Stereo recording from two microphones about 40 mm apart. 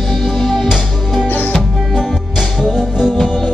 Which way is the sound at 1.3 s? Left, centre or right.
Left.